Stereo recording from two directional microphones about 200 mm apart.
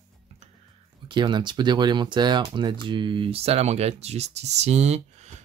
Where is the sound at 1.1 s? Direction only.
25° right (ahead or behind).